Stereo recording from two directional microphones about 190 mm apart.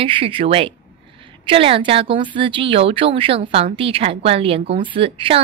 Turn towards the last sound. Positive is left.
turn(degrees=-30)  # may be behind; listen again after turning